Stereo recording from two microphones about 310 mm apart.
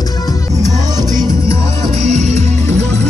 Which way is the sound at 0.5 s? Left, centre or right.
Centre.